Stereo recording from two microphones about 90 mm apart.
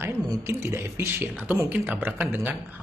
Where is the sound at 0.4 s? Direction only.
30° right (ahead or behind).